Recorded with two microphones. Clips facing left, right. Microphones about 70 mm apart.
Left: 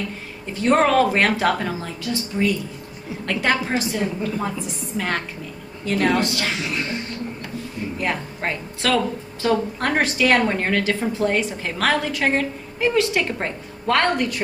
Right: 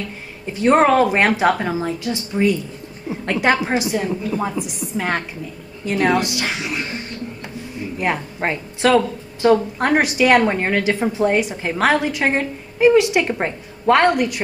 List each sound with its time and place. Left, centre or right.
0.6 s a woman's voice: centre
8.0 s speech: right